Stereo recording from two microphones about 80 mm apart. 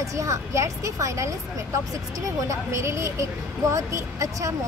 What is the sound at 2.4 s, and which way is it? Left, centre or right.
A woman's voice, right.